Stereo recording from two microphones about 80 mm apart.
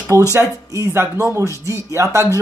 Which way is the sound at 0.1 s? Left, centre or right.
Right.